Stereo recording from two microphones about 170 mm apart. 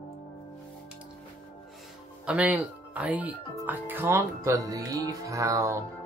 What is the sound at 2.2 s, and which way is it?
Speech, 5° right (ahead or behind).